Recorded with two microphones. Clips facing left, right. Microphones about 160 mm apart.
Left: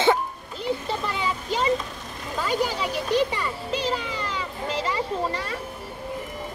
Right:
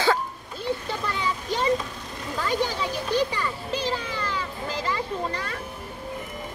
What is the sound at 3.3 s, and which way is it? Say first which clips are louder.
A child's voice: left 1 dB; 20° left (ahead or behind).